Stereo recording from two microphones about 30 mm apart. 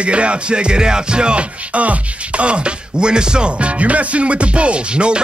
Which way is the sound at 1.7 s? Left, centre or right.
Right.